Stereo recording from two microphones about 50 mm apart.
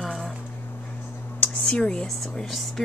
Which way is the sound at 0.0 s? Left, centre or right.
Centre.